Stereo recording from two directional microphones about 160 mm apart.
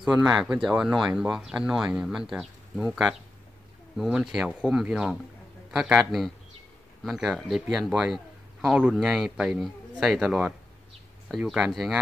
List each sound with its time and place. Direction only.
0.0 s a man's voice: 5° right (ahead or behind)